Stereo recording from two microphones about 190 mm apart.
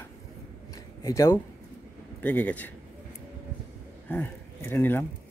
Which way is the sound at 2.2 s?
10° left (ahead or behind).